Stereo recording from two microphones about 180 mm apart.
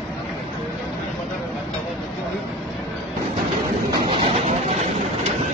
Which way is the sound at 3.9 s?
30° right (ahead or behind).